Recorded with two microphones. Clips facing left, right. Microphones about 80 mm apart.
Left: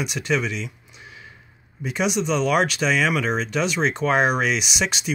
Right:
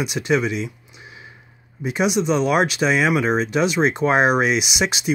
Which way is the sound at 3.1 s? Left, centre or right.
Right.